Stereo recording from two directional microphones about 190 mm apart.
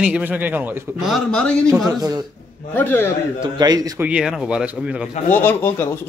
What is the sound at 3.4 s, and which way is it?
Speech, 20° right (ahead or behind).